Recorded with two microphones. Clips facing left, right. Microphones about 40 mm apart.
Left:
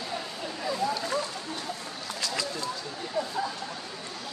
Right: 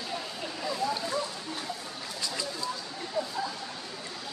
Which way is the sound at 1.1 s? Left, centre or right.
Left.